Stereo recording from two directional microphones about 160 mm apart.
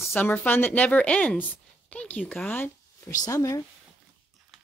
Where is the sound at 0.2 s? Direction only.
10° left (ahead or behind).